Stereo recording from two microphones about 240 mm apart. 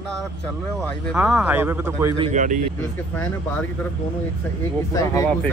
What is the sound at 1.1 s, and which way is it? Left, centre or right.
Speech, centre.